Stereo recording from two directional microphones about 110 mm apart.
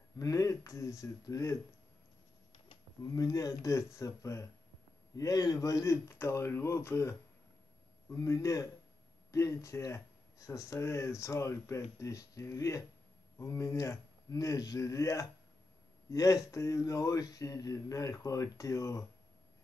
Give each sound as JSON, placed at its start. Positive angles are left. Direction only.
{"t": 0.2, "sound": "speech", "side_deg": 30}
{"t": 3.2, "sound": "speech", "side_deg": 35}